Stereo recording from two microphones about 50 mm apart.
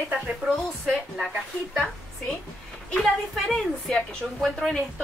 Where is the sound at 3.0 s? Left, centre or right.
Centre.